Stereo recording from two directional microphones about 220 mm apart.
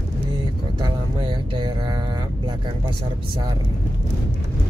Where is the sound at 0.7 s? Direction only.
20° right (ahead or behind).